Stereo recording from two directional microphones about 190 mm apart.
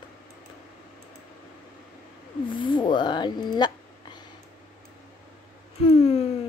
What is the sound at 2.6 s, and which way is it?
Speech, 25° left (ahead or behind).